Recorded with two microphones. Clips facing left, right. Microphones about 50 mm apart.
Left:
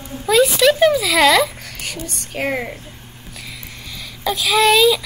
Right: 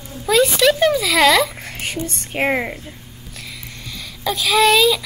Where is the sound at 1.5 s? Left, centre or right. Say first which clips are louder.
Right 3 dB; right.